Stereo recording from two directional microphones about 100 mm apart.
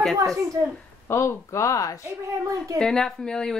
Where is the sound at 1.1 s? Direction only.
25° left (ahead or behind).